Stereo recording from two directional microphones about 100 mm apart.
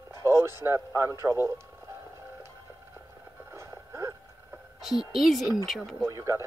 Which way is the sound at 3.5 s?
25° right (ahead or behind).